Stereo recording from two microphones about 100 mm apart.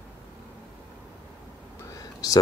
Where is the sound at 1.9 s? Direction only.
35° left (ahead or behind).